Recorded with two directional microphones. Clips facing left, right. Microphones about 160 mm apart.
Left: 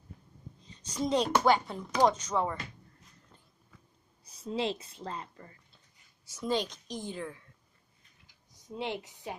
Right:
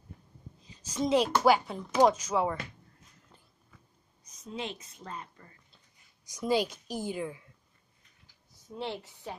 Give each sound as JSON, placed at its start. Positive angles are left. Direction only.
{"t": 0.7, "sound": "a woman's voice", "side_deg": -5}
{"t": 4.2, "sound": "a woman's voice", "side_deg": 30}
{"t": 6.2, "sound": "a woman's voice", "side_deg": -10}
{"t": 8.5, "sound": "speech", "side_deg": 15}